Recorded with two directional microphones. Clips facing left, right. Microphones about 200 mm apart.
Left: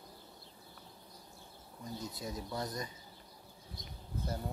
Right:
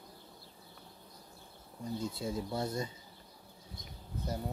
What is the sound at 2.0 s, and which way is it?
Speech, 25° right (ahead or behind).